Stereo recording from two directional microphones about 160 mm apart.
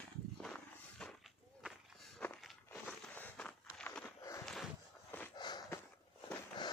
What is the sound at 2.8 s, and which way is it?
Walk, 10° left (ahead or behind).